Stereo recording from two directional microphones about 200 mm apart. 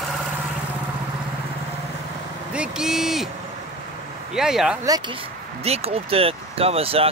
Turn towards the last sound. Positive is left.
turn(degrees=-30)  # may be behind; listen again after turning